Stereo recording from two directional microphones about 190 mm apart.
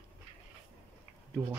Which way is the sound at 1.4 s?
15° right (ahead or behind).